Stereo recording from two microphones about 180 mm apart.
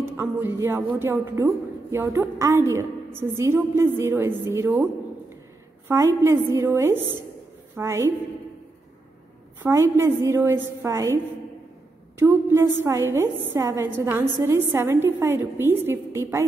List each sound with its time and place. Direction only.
0.2 s a woman's voice: 10° right (ahead or behind)
5.9 s a woman's voice: 15° right (ahead or behind)
9.6 s a woman's voice: 15° right (ahead or behind)
12.2 s a woman's voice: 15° right (ahead or behind)